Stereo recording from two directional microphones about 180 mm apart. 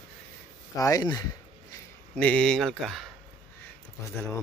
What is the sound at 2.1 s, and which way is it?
Speech, 5° left (ahead or behind).